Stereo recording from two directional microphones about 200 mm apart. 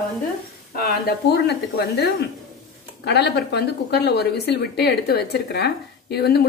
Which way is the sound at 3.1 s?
55° left (ahead or behind).